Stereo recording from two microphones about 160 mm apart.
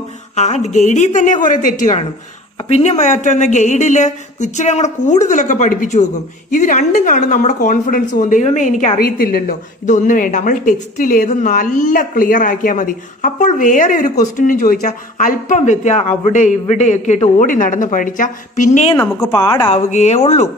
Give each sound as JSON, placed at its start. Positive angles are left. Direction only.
{"t": 0.4, "sound": "a woman's voice", "side_deg": 45}
{"t": 18.9, "sound": "speech", "side_deg": 25}
{"t": 19.7, "sound": "a woman's voice", "side_deg": 45}